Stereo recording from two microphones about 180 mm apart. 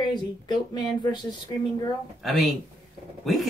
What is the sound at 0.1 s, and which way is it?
Speech, 25° left (ahead or behind).